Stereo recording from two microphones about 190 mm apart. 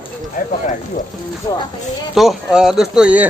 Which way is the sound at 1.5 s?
20° left (ahead or behind).